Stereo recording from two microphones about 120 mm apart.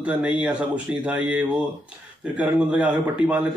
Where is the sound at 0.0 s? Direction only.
10° right (ahead or behind).